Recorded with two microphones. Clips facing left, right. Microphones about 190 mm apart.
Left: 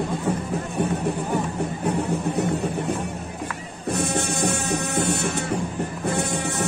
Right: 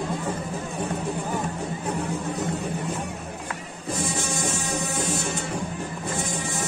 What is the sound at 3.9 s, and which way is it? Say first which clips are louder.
Music: left 4 dB; 60° left (ahead or behind).